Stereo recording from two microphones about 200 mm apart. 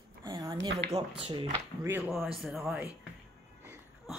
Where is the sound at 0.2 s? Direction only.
20° right (ahead or behind).